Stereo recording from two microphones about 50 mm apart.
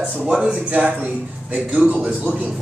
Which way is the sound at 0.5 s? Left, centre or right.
Right.